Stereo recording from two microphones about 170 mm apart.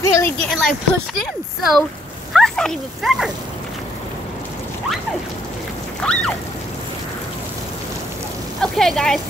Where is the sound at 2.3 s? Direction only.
5° left (ahead or behind).